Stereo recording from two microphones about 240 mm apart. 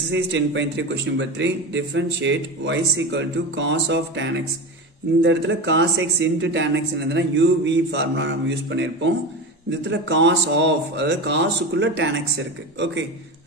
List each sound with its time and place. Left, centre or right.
0.1 s a man's voice: right